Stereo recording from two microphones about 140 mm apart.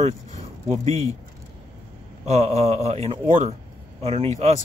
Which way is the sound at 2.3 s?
50° right (ahead or behind).